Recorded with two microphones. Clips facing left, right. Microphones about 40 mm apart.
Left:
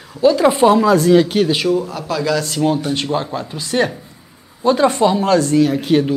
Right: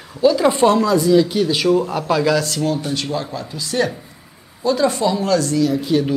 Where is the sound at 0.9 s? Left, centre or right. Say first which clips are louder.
Left 2 dB; left.